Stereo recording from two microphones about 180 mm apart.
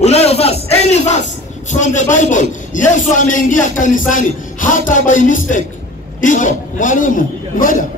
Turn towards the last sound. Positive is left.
turn(degrees=50)  # may be behind; listen again after turning